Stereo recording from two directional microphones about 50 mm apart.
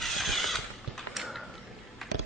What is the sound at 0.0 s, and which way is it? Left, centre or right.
Mechanisms, centre.